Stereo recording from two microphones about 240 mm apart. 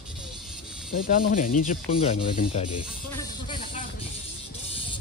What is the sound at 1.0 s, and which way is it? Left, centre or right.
Speech, left.